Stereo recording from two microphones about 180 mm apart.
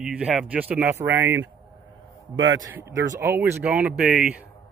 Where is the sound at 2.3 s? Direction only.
90° right.